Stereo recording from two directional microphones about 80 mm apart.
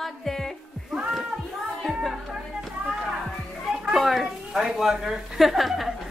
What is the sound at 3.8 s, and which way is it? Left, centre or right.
Speech, centre.